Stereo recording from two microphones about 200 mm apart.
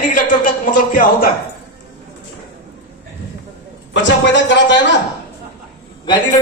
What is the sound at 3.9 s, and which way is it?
Speech, 65° left (ahead or behind).